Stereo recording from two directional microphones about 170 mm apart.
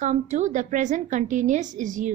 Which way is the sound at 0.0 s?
45° right (ahead or behind).